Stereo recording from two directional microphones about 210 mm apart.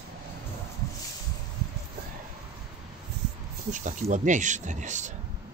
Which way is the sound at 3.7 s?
35° right (ahead or behind).